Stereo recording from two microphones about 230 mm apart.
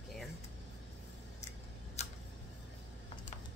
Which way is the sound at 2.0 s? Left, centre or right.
Left.